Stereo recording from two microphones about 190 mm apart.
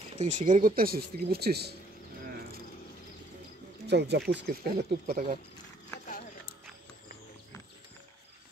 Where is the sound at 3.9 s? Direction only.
65° right (ahead or behind).